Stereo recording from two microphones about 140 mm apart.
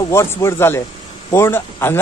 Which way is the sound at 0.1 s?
20° left (ahead or behind).